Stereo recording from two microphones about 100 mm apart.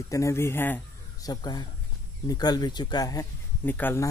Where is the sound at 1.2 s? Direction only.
40° left (ahead or behind).